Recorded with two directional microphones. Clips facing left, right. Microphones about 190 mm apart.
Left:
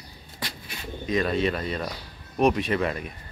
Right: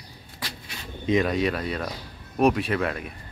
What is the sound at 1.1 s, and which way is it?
Speech, 15° right (ahead or behind).